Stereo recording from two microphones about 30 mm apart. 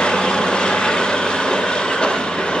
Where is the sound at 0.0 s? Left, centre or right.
Left.